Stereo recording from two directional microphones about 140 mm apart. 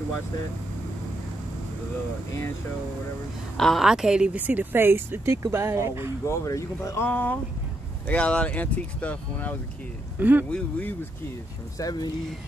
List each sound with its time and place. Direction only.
3.5 s speech: centre (ahead or behind); by 6.1 s 15° right (ahead or behind)
6.2 s speech: 20° left (ahead or behind)
10.1 s speech: 15° right (ahead or behind)
10.5 s speech: 15° left (ahead or behind)
11.8 s speech: 30° left (ahead or behind)